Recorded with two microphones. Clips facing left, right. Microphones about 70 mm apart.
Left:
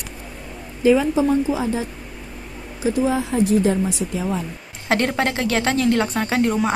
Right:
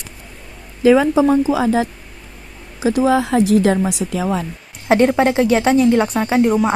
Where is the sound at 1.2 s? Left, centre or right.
Right.